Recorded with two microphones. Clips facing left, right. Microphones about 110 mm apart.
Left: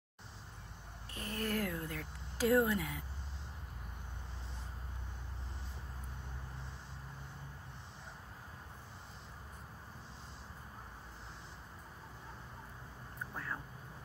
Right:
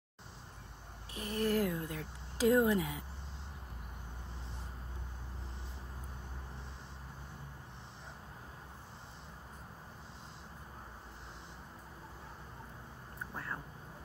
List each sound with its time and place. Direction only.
1.1 s speech: 20° right (ahead or behind)